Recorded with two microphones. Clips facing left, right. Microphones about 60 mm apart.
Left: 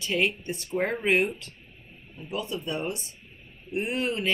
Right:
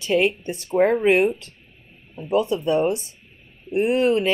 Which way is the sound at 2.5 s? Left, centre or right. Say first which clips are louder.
Right 11 dB; centre.